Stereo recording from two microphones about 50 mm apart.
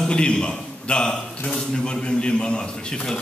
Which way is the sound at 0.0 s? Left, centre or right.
Centre.